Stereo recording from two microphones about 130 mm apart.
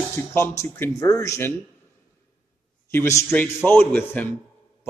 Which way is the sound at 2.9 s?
20° left (ahead or behind).